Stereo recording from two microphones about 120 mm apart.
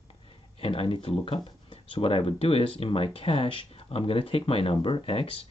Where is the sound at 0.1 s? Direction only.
50° left (ahead or behind).